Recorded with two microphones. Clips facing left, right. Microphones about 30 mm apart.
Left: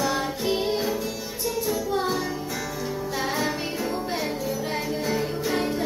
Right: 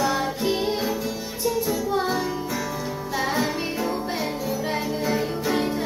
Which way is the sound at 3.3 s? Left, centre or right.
Centre.